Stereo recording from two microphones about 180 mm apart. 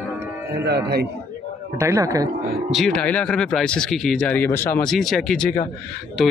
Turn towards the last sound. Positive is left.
turn(degrees=0)  # may be behind; listen again after turning